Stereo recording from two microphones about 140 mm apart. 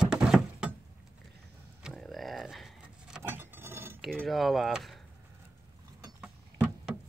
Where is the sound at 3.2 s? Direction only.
15° right (ahead or behind).